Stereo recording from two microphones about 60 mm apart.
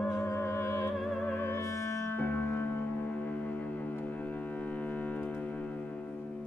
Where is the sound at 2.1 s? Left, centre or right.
Left.